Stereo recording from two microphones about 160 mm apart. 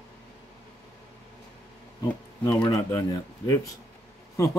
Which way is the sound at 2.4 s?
20° left (ahead or behind).